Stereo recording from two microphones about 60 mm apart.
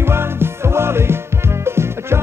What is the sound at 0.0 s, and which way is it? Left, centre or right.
Music, right.